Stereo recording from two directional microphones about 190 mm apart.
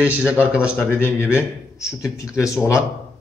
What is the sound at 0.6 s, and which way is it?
Speech, 10° left (ahead or behind).